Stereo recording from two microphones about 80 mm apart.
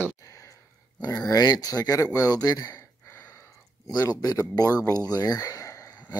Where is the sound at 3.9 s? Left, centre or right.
Left.